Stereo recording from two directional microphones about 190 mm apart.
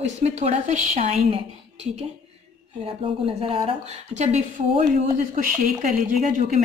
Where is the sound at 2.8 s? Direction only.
30° right (ahead or behind).